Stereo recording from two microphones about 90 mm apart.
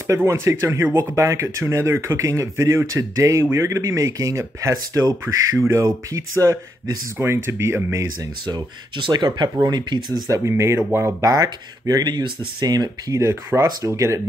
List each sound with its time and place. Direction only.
0.0 s speech: 30° right (ahead or behind)
6.1 s speech: 35° right (ahead or behind)
8.5 s speech: 55° right (ahead or behind)
10.1 s speech: 40° right (ahead or behind)
10.4 s speech: 30° right (ahead or behind)
11.2 s speech: 40° right (ahead or behind)
13.2 s speech: 30° right (ahead or behind)